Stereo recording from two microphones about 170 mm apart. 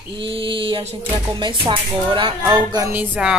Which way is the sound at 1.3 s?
25° right (ahead or behind).